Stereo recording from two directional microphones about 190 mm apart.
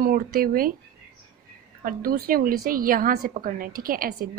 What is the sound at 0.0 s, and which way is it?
Speech, 50° right (ahead or behind).